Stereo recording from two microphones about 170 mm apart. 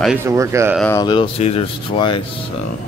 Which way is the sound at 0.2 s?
15° right (ahead or behind).